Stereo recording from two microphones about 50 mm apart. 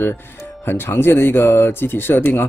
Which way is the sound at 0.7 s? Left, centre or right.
Left.